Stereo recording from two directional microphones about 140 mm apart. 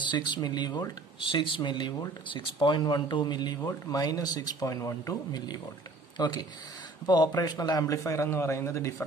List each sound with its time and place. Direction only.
0.0 s speech: 35° left (ahead or behind)